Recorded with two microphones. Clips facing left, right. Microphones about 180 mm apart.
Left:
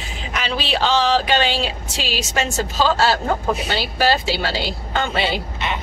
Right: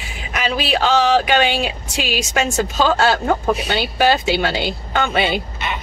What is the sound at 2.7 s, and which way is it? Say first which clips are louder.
Speech: right 1 dB; 55° right (ahead or behind).